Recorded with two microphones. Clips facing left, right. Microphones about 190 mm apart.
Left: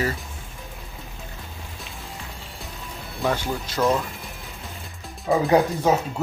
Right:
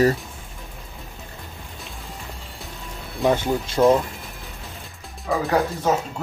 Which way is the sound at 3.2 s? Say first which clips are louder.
Right 5 dB; 20° right (ahead or behind).